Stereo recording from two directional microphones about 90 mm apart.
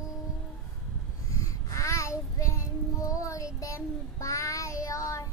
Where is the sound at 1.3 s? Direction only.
40° left (ahead or behind).